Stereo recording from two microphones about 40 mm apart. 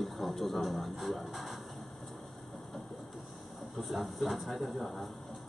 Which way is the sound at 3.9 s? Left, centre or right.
Centre.